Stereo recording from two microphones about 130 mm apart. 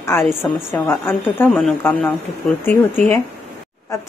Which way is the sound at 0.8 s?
15° left (ahead or behind).